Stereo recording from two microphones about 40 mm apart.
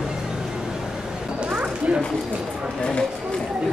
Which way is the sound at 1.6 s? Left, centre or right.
Right.